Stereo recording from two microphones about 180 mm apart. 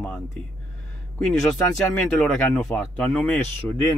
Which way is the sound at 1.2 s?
Centre (ahead or behind).